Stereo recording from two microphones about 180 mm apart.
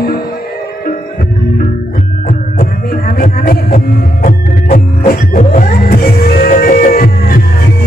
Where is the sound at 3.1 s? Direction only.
50° left (ahead or behind).